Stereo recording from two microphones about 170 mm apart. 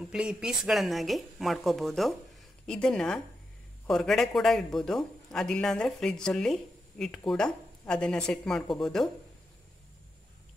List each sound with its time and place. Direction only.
0.0 s a man's voice: 5° right (ahead or behind)